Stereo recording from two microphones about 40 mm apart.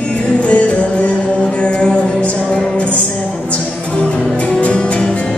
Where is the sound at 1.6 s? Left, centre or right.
Left.